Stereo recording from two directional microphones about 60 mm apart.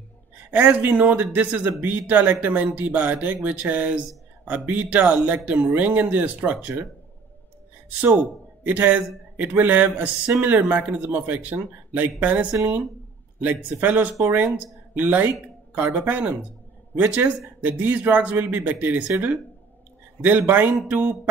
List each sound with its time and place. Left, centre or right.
0.5 s speech: right
8.2 s a man's voice: right
20.2 s a man's voice: right